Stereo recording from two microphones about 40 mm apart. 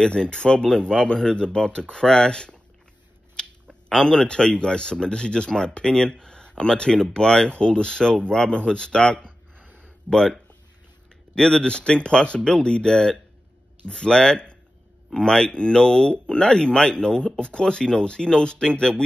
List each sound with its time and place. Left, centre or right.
0.0 s speech: left
3.4 s a sound: centre
3.9 s speech: centre